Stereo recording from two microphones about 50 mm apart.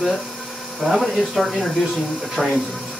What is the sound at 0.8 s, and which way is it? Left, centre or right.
Speech, centre.